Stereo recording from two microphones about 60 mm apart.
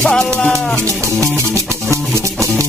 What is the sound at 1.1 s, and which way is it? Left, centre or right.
Music, right.